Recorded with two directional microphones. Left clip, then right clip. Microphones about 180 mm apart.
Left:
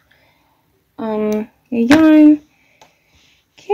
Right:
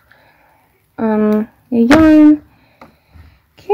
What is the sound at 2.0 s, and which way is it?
Speech, centre (ahead or behind).